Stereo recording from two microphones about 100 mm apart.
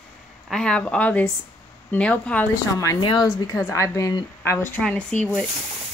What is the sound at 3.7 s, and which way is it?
Speech, 30° left (ahead or behind).